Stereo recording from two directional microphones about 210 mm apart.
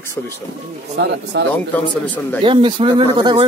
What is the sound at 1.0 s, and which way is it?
Speech, 55° right (ahead or behind).